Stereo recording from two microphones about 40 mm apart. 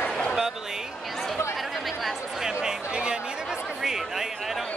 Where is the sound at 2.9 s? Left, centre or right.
Right.